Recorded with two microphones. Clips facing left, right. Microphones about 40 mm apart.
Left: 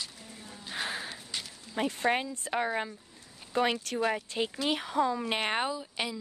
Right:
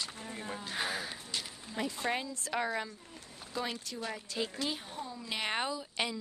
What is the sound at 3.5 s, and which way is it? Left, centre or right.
Speech, left.